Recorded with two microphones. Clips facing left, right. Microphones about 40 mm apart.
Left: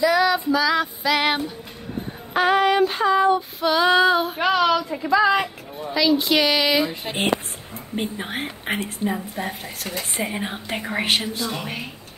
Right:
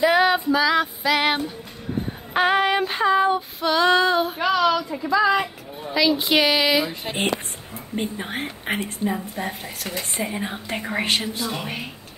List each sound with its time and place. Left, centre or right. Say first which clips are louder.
0.0 s female singing: right 1 dB; right
0.5 s female singing: right 1 dB; centre
1.0 s speech: left 2 dB; centre
2.5 s female singing: left 2 dB; centre
3.3 s speech: left 1 dB; centre
4.4 s speech: left 1 dB; left
5.9 s speech: left 1 dB; centre
10.2 s speech: left 1 dB; centre
10.8 s speech: left 1 dB; centre